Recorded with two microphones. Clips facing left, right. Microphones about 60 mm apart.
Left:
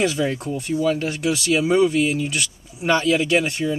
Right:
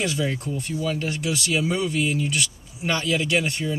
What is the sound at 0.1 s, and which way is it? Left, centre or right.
Speech, left.